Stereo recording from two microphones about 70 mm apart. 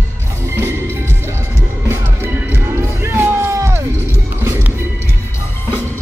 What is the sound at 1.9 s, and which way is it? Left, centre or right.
Music, right.